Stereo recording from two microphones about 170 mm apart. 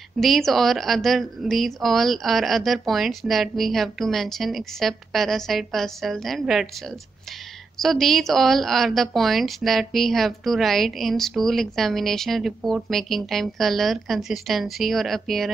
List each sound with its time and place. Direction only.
0.2 s a woman's voice: centre (ahead or behind)
7.8 s a woman's voice: centre (ahead or behind)